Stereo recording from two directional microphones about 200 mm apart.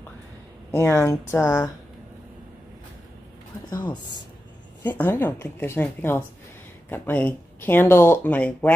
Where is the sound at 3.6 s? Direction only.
20° left (ahead or behind).